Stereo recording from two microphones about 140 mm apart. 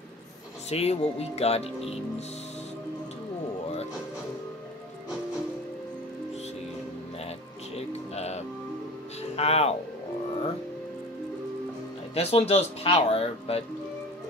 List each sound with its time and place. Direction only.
0.7 s speech: 50° left (ahead or behind)
7.2 s music: 45° left (ahead or behind)
9.3 s speech: 45° left (ahead or behind)
12.1 s speech: 45° left (ahead or behind)